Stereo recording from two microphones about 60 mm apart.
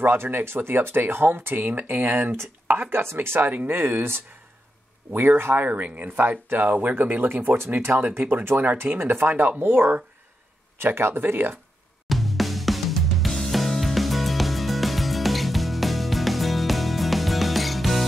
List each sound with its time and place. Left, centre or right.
0.0 s speech: right
3.3 s speech: right
12.1 s music: centre